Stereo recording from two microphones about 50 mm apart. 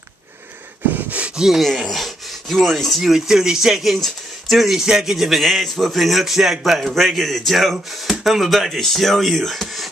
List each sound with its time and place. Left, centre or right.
0.9 s gasp: right
1.2 s gasp: centre
1.8 s speech: centre
3.0 s speech: centre
5.4 s a man's voice: centre